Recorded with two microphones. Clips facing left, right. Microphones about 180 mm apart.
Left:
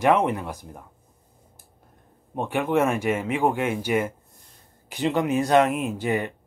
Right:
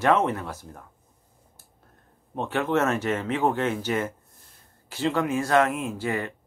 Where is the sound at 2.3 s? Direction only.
15° left (ahead or behind).